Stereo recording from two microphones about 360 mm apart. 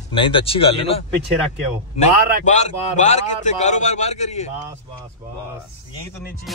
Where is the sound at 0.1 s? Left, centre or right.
Centre.